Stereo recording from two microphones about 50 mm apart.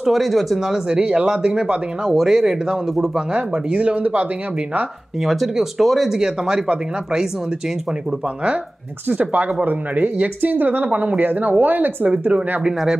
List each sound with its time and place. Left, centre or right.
0.0 s speech: centre; by 4.3 s right
5.2 s speech: centre
6.1 s speech: centre
9.1 s a woman's voice: right
12.1 s speech: right